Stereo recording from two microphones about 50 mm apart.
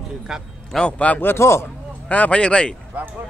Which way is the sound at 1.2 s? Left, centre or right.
Left.